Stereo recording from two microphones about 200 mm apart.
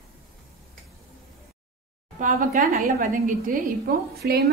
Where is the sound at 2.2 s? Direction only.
35° right (ahead or behind).